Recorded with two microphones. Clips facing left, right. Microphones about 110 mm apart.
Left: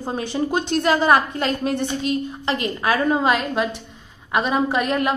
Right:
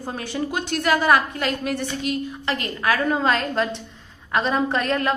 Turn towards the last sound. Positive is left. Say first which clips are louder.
# left 2 dB
turn(degrees=15)  # may be behind; listen again after turning